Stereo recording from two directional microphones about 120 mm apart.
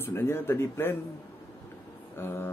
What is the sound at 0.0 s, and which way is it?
Speech, 20° left (ahead or behind).